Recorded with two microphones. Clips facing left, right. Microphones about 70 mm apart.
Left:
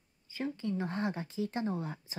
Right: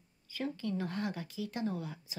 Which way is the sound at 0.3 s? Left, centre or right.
Left.